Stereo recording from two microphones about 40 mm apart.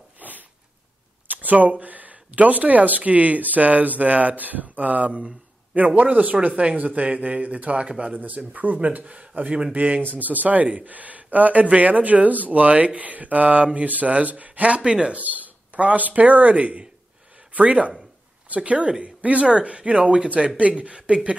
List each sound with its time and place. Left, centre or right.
0.2 s a sound: right
1.2 s speech: right
8.2 s speech: right
14.8 s speech: right
15.1 s speech: right